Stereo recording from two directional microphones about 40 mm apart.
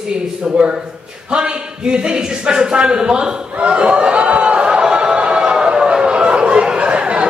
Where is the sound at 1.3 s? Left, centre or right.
Right.